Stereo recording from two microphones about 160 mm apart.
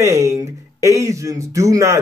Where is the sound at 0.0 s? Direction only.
20° right (ahead or behind).